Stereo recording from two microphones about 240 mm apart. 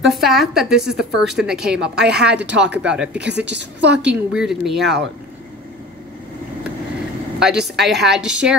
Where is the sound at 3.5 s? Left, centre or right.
Right.